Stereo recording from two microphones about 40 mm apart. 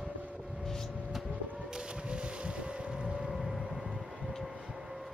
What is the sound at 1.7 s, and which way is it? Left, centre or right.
Boat, centre.